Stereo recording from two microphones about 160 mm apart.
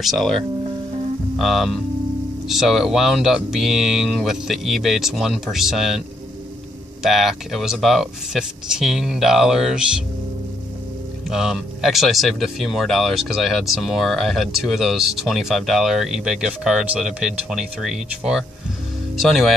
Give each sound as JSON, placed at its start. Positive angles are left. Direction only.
{"t": 0.0, "sound": "speech", "side_deg": 0}
{"t": 1.4, "sound": "speech", "side_deg": 0}
{"t": 11.2, "sound": "speech", "side_deg": -5}